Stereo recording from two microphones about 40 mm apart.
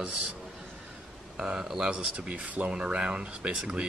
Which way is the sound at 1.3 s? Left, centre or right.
Centre.